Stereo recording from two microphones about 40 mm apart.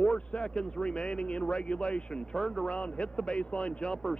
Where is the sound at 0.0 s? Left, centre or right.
Left.